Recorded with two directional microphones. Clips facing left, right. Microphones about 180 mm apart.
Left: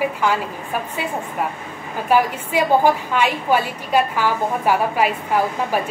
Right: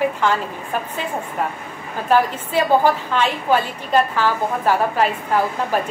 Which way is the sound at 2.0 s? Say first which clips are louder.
Even; 10° left (ahead or behind).